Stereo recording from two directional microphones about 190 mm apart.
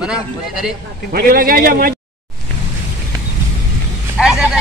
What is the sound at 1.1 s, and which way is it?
Speech, 50° right (ahead or behind).